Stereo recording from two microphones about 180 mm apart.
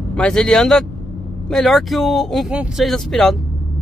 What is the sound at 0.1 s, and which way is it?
Speech, 5° left (ahead or behind).